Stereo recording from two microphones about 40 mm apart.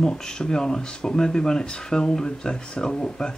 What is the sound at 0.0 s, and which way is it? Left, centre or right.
Speech, centre.